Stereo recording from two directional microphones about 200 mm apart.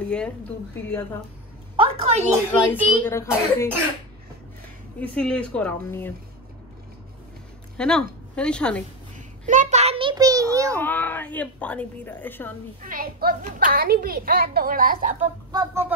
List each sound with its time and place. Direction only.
0.0 s speech: 5° left (ahead or behind)
1.8 s a sound: 30° right (ahead or behind)
3.0 s a woman's voice: 10° left (ahead or behind)
5.0 s a woman's voice: 5° left (ahead or behind)
7.7 s speech: 5° left (ahead or behind)
9.1 s a sound: 35° right (ahead or behind); by 10.8 s 15° right (ahead or behind)
10.8 s a woman's voice: 10° left (ahead or behind)
12.8 s a child's voice: 45° right (ahead or behind)
15.5 s speech: 15° right (ahead or behind)